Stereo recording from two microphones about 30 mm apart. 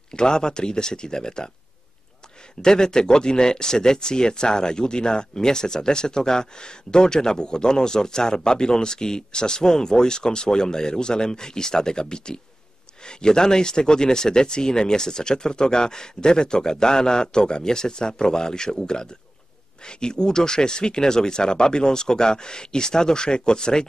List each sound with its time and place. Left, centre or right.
0.1 s speech: left
2.6 s speech: left